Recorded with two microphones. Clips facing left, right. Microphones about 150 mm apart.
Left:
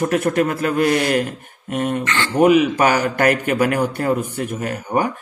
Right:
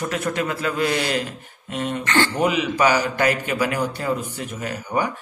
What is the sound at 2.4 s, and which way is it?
Speech, 50° left (ahead or behind).